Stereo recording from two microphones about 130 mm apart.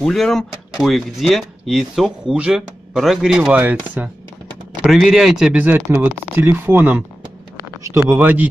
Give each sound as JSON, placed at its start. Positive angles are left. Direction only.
{"t": 0.0, "sound": "speech", "side_deg": 0}
{"t": 4.8, "sound": "speech", "side_deg": 0}